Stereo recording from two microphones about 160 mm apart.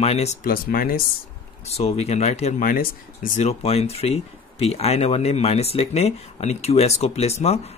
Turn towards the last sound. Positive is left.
turn(degrees=40)  # may be behind; listen again after turning